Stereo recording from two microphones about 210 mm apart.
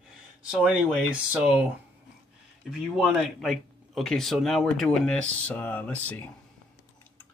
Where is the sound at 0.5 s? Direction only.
5° right (ahead or behind).